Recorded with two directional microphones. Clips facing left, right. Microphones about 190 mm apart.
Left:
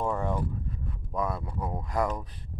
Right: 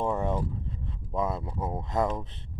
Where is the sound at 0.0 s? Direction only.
20° right (ahead or behind).